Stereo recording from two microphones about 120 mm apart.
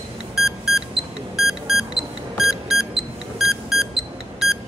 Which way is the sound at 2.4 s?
Centre (ahead or behind).